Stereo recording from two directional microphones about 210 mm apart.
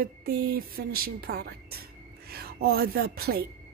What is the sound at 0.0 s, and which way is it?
Speech, 45° right (ahead or behind).